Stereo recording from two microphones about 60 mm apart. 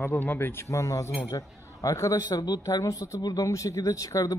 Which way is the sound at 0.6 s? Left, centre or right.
Left.